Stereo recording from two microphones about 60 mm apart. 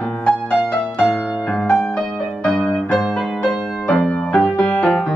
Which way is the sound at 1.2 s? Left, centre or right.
Centre.